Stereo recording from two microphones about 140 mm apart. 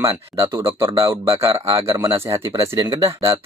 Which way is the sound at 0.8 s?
35° right (ahead or behind).